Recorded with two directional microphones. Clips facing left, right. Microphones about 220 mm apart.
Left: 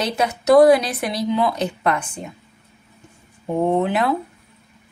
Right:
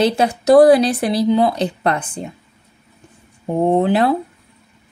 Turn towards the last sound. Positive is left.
turn(degrees=-30)  # may be behind; listen again after turning